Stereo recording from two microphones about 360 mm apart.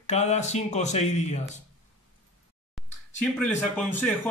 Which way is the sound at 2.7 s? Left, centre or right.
Centre.